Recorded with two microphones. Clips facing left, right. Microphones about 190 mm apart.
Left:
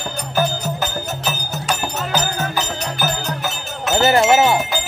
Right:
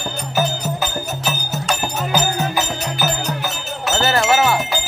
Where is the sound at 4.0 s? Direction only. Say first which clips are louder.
Left 3 dB; 20° left (ahead or behind).